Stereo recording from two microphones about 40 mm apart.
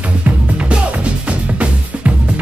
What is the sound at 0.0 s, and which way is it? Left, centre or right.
Music, right.